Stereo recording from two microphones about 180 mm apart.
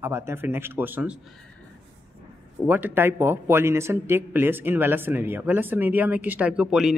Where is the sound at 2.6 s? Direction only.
10° right (ahead or behind).